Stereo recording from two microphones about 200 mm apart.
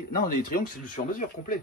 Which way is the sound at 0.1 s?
40° left (ahead or behind).